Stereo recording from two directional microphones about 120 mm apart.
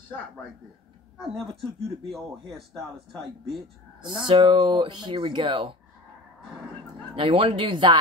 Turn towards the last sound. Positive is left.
turn(degrees=-40)  # may be behind; listen again after turning